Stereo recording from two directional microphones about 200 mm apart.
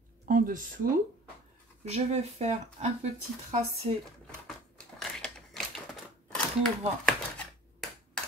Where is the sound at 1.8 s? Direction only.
30° right (ahead or behind).